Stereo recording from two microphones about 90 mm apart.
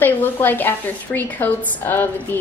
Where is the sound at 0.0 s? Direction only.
20° left (ahead or behind).